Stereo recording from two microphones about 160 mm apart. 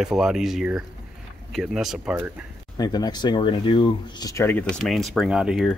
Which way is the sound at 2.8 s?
25° left (ahead or behind).